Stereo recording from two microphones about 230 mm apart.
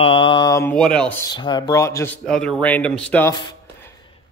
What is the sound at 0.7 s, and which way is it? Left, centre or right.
Speech, centre.